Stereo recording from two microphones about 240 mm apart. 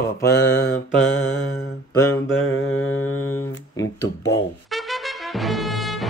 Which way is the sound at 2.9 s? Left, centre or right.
Centre.